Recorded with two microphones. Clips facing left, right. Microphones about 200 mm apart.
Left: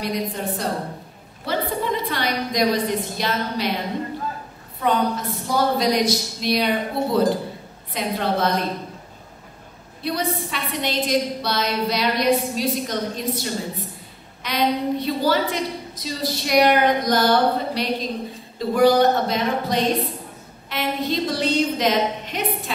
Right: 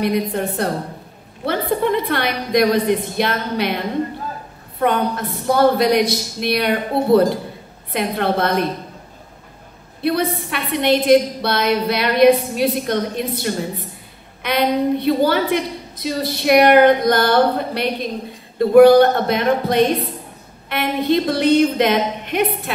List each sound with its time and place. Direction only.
0.0 s a woman's voice: 60° right (ahead or behind)
4.7 s a woman's voice: 60° right (ahead or behind)
10.0 s a woman's voice: 60° right (ahead or behind)